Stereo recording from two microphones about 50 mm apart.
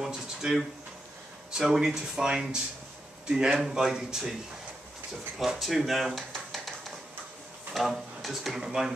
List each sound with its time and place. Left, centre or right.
0.0 s speech: centre
1.7 s speech: centre
5.4 s speech: centre